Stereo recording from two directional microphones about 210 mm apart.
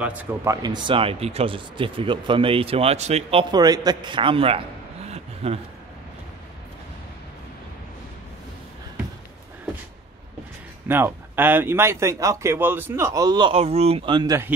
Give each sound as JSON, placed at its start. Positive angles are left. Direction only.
{"t": 0.0, "sound": "speech", "side_deg": -5}
{"t": 10.9, "sound": "a man's voice", "side_deg": -10}